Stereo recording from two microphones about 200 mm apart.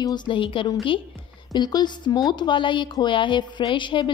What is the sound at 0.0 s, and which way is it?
A woman's voice, 20° left (ahead or behind).